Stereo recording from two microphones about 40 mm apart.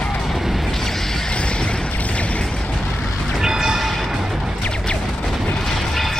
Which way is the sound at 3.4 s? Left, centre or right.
Centre.